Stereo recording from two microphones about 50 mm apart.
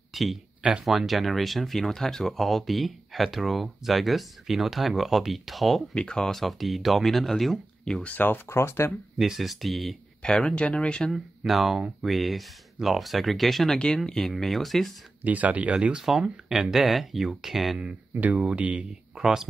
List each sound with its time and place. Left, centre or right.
0.1 s a sound: centre
0.6 s speech: centre
0.8 s speech: centre
5.9 s speech: centre
8.5 s speech: left
9.2 s speech: centre
10.2 s speech: centre
11.1 s speech: centre
13.7 s speech: centre
15.2 s speech: right
15.7 s speech: right
16.0 s speech: centre
18.4 s speech: right
19.1 s speech: centre